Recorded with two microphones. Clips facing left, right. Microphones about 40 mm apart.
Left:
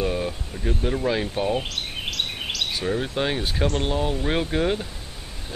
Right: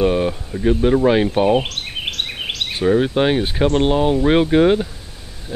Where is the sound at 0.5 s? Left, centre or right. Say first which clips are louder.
Right 11 dB; right.